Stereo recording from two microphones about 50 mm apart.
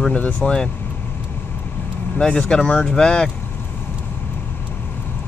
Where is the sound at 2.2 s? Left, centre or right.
Centre.